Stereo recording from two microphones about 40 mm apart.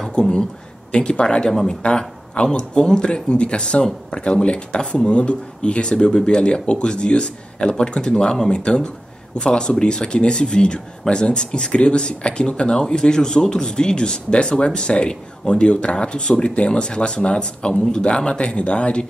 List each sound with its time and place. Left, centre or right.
0.1 s speech: centre
1.5 s speech: centre
1.8 s speech: left